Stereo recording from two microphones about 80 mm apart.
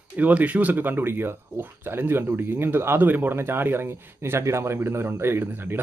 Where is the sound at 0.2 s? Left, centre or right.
Centre.